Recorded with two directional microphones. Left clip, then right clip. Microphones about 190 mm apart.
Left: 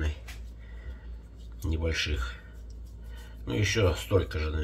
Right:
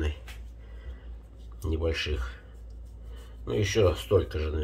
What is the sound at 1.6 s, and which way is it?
Speech, 20° right (ahead or behind).